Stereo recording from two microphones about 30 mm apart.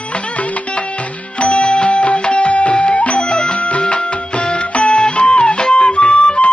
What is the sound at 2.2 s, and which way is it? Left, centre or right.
Music, left.